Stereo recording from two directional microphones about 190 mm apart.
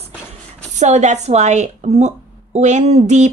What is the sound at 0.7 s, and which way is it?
A woman's voice, 35° right (ahead or behind).